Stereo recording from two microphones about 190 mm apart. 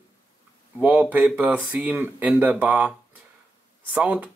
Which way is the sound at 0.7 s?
5° right (ahead or behind).